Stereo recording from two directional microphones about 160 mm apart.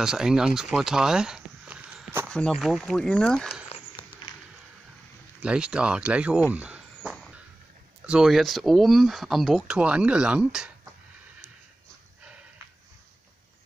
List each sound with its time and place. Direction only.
0.0 s speech: 5° right (ahead or behind)
2.2 s speech: 5° left (ahead or behind)
5.4 s speech: 5° right (ahead or behind)
6.5 s a sound: 5° right (ahead or behind)
8.0 s speech: 5° right (ahead or behind)